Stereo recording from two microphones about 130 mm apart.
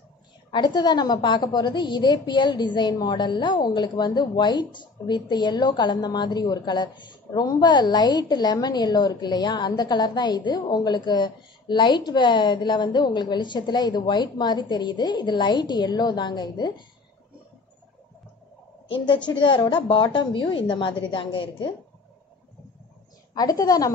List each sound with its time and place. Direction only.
0.5 s a woman's voice: 35° left (ahead or behind)
19.2 s a woman's voice: 40° left (ahead or behind)
23.3 s a woman's voice: 30° left (ahead or behind)